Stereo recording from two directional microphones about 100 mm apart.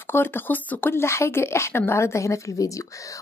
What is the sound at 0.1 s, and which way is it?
A woman's voice, 20° left (ahead or behind).